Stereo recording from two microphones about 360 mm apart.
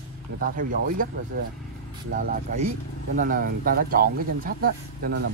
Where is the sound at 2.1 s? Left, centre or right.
Right.